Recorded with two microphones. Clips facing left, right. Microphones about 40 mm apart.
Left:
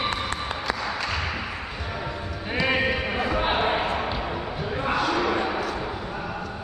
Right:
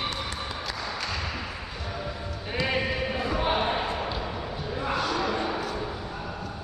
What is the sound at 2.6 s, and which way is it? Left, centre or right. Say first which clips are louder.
Basketball bounce: left 4 dB; left.